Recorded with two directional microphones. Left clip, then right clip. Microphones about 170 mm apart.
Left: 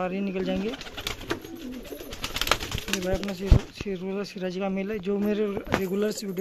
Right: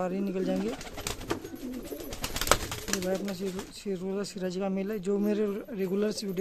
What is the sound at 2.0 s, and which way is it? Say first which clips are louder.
Bird: left 1 dB; 40° right (ahead or behind).